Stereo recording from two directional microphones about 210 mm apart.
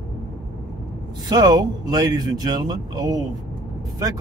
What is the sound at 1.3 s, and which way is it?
Speech, 20° right (ahead or behind).